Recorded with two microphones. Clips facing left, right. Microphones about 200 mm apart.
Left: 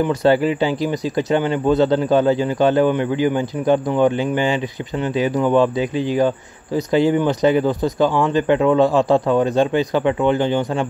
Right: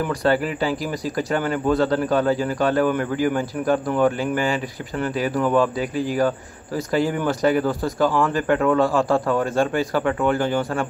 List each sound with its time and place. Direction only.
0.0 s speech: 25° left (ahead or behind)